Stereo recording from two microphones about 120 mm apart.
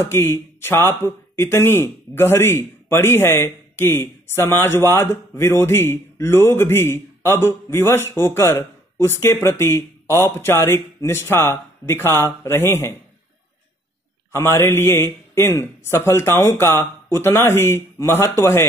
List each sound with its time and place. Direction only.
0.0 s speech: 20° left (ahead or behind)
14.3 s speech: 20° left (ahead or behind)